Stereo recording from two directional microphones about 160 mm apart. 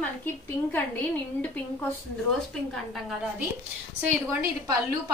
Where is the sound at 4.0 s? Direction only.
15° right (ahead or behind).